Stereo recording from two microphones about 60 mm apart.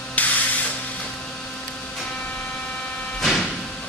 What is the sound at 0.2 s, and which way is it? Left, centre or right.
Spray, left.